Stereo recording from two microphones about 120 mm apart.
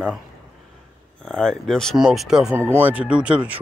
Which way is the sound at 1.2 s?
5° left (ahead or behind).